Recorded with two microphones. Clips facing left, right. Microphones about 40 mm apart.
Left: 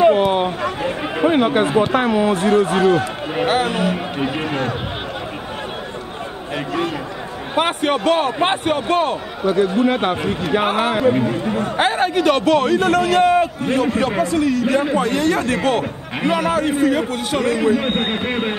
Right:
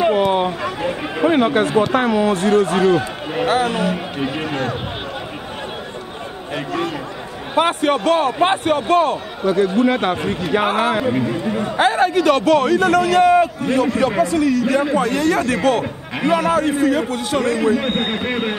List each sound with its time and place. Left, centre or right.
0.0 s a sound: centre
1.6 s speech: centre
3.4 s a man's voice: left
3.7 s speech: centre
6.5 s speech: centre
7.6 s a man's voice: left
9.4 s speech: centre
11.7 s a man's voice: left
17.8 s speech: centre